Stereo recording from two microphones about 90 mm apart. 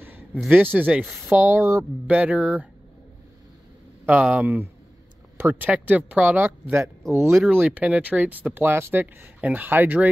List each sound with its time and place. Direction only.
0.0 s a sound: 20° right (ahead or behind)
0.7 s speech: 20° right (ahead or behind)
2.0 s speech: 15° right (ahead or behind)
4.0 s speech: 15° right (ahead or behind)
7.7 s speech: 15° right (ahead or behind)